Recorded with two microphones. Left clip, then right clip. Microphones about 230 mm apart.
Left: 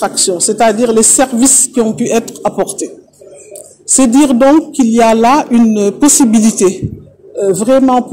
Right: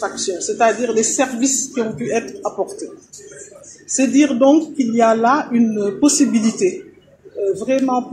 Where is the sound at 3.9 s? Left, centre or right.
Left.